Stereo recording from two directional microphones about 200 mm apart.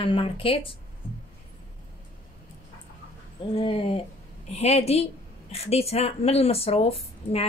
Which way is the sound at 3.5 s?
25° left (ahead or behind).